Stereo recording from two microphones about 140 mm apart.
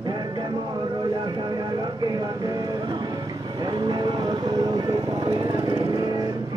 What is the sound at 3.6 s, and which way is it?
Vehicle, 35° right (ahead or behind).